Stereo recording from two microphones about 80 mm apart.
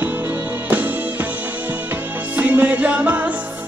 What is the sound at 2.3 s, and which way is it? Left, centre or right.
Music, centre.